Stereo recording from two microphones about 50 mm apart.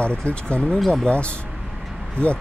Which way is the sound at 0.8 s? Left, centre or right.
Centre.